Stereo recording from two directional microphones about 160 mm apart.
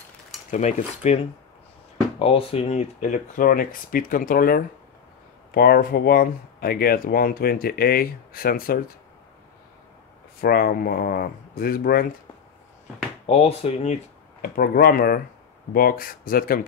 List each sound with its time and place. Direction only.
0.5 s speech: 50° left (ahead or behind)
10.4 s speech: 70° left (ahead or behind)
13.3 s speech: 40° left (ahead or behind)
14.5 s speech: 65° left (ahead or behind)